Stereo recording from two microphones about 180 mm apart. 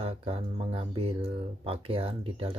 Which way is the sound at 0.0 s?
30° right (ahead or behind).